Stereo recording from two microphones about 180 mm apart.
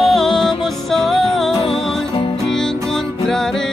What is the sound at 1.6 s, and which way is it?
Music, 30° left (ahead or behind).